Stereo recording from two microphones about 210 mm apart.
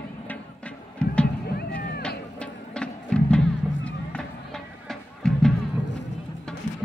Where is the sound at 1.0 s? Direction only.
5° left (ahead or behind).